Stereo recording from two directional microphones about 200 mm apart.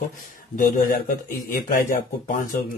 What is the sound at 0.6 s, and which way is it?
A man's voice, 45° left (ahead or behind).